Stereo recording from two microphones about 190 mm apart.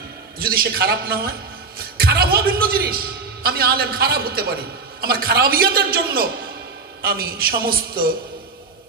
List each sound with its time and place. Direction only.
0.4 s a man's voice: 50° right (ahead or behind)